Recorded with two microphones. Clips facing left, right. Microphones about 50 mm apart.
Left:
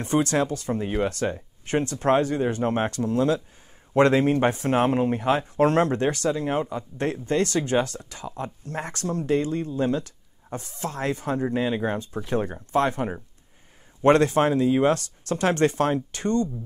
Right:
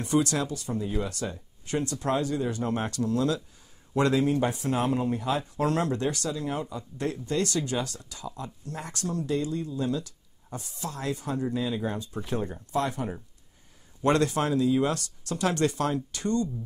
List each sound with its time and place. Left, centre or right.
0.0 s speech: left
3.9 s speech: left